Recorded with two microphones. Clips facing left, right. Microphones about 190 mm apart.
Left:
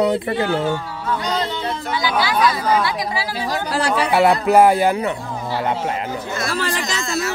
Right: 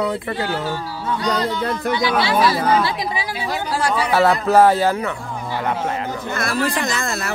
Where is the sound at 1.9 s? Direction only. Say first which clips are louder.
Right 1 dB; 25° right (ahead or behind).